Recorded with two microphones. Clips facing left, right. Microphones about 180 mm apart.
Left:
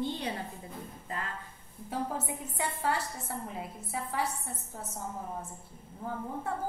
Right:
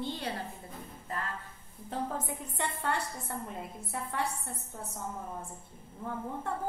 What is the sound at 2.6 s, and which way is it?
A woman's voice, 5° left (ahead or behind).